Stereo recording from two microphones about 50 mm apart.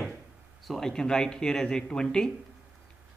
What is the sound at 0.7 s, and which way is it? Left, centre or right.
Speech, centre.